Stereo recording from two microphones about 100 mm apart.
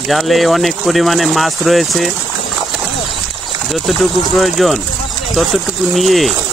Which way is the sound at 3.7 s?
Centre (ahead or behind).